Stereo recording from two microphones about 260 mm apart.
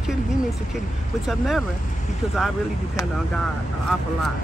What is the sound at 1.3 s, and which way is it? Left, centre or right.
Speech, centre.